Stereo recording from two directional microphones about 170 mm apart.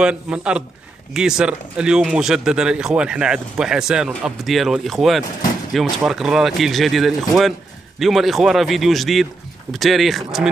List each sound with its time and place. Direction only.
0.0 s speech: 5° right (ahead or behind)